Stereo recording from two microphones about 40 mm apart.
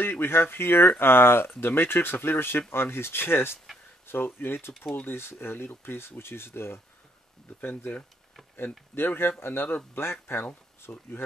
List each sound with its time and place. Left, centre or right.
0.0 s speech: left
2.7 s speech: left
8.9 s speech: left
10.3 s speech: left
10.9 s speech: left